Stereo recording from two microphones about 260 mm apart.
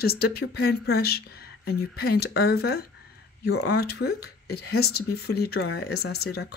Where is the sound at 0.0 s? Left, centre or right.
Left.